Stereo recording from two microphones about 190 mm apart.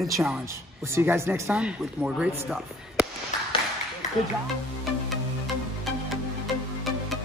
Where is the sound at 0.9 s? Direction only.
15° right (ahead or behind).